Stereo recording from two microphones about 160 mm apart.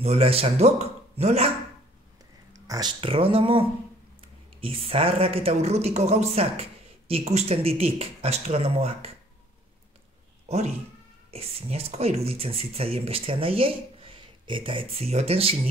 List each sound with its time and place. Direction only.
0.0 s speech: 40° right (ahead or behind)
2.5 s speech: 20° right (ahead or behind); by 9.1 s 40° right (ahead or behind)
10.5 s speech: 40° right (ahead or behind)